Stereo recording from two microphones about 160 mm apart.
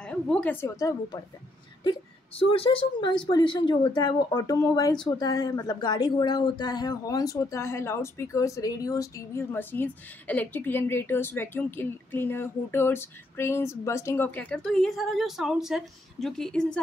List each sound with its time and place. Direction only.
0.0 s a woman's voice: 5° left (ahead or behind)
1.8 s speech: 30° left (ahead or behind); by 16.8 s 5° left (ahead or behind)